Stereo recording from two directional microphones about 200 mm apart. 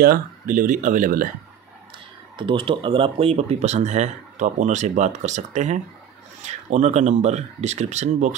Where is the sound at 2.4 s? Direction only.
25° right (ahead or behind).